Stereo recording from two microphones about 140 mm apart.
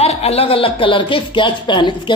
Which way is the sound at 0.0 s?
50° left (ahead or behind).